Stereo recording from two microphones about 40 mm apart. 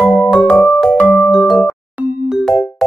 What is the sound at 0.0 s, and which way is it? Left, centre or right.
Music, centre.